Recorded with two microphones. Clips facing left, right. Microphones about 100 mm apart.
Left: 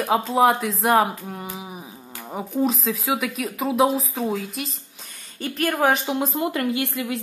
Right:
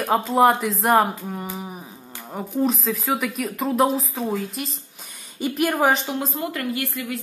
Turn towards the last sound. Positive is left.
turn(degrees=20)  # may be behind; listen again after turning